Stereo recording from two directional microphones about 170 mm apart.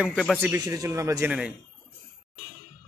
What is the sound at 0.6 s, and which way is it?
Speech, 20° right (ahead or behind).